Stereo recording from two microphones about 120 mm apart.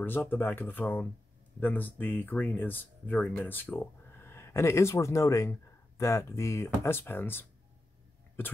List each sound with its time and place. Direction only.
0.0 s speech: 15° left (ahead or behind)